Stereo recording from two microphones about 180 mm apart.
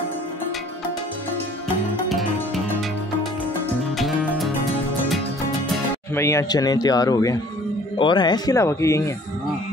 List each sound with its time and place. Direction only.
4.0 s music: centre (ahead or behind)
6.1 s speech: 15° left (ahead or behind)